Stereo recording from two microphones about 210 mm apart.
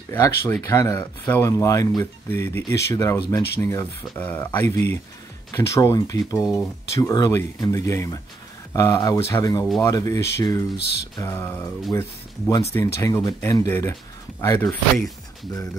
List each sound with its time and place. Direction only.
0.1 s speech: 10° left (ahead or behind)